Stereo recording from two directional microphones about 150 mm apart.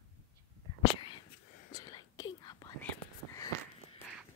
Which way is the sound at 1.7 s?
25° left (ahead or behind).